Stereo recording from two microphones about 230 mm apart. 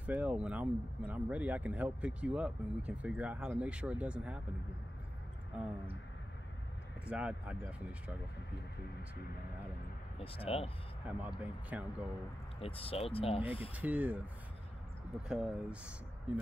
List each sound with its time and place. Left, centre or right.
0.0 s speech: centre
7.1 s speech: centre
10.2 s speech: left
11.1 s speech: centre
12.5 s speech: left
13.7 s speech: centre
15.2 s speech: centre